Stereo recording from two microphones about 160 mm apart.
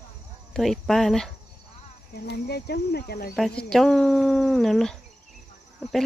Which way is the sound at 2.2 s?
85° left.